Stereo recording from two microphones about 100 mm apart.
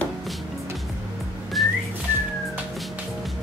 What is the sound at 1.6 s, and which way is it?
Whistling, centre (ahead or behind).